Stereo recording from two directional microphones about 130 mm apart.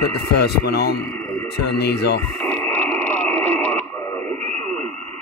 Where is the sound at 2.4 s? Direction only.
10° left (ahead or behind).